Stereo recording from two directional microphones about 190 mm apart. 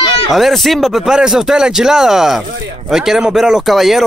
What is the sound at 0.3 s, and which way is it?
Speech, centre (ahead or behind).